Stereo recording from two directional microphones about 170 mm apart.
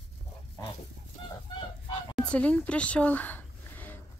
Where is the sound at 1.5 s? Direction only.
30° left (ahead or behind).